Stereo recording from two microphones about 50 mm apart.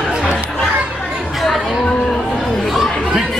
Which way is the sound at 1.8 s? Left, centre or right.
Centre.